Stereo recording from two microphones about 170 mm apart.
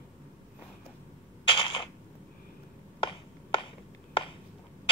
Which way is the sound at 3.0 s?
30° left (ahead or behind).